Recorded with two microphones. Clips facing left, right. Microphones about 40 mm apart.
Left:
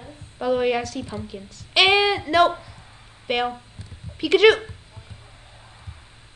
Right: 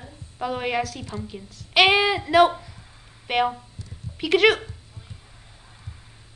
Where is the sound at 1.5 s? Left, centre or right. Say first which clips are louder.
Even; centre.